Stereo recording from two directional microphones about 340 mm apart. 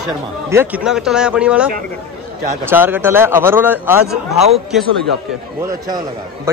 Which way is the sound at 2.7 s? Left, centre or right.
Centre.